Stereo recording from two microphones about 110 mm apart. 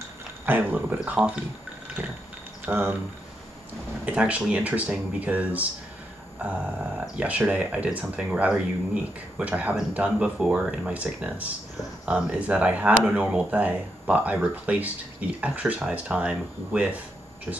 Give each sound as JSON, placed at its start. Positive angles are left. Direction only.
{"t": 0.5, "sound": "speech", "side_deg": -15}
{"t": 2.6, "sound": "speech", "side_deg": -20}
{"t": 4.0, "sound": "speech", "side_deg": -10}